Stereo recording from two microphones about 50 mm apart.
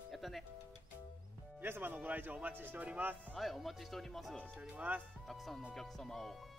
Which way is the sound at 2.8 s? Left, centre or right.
Right.